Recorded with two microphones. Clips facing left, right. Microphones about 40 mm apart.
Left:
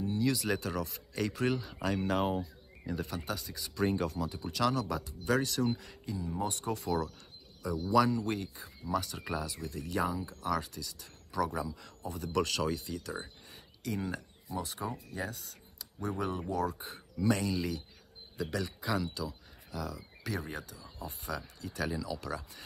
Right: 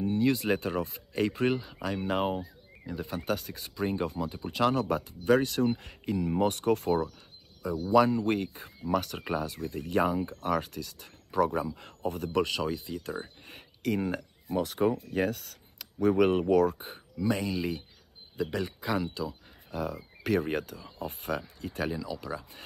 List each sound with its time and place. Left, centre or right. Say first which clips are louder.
0.0 s speech: right 5 dB; right
1.7 s speech: right 1 dB; centre
3.1 s speech: right 6 dB; right
3.7 s speech: even; centre
4.0 s speech: right 2 dB; right
7.2 s cricket: even; right
7.9 s speech: right 5 dB; right
12.4 s speech: right 2 dB; centre
13.4 s speech: right 7 dB; right
17.2 s speech: right 1 dB; centre; by 21.8 s right
21.9 s speech: right 2 dB; centre